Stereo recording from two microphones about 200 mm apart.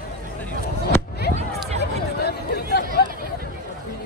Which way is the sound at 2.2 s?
55° left (ahead or behind).